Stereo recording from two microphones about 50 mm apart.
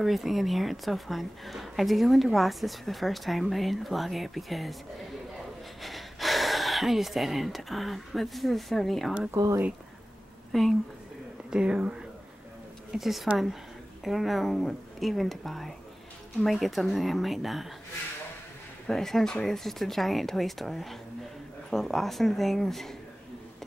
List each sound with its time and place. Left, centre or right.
0.0 s speech: centre
5.8 s speech: centre
9.3 s speech: right
10.5 s speech: centre
11.5 s speech: right
12.9 s speech: centre
18.9 s speech: centre